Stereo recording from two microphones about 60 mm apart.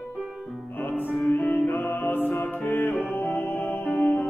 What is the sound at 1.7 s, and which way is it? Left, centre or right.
Mantra, left.